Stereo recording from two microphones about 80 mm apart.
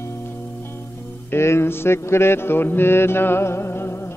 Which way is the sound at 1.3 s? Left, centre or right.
Left.